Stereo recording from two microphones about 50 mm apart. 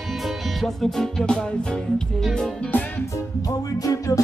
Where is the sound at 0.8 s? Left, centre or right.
Centre.